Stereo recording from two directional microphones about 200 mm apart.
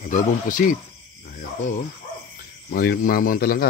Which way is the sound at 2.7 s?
50° left (ahead or behind).